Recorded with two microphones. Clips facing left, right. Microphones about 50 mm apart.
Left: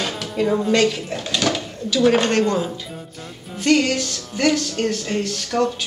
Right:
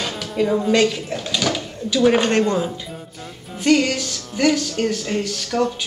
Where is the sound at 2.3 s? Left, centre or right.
Centre.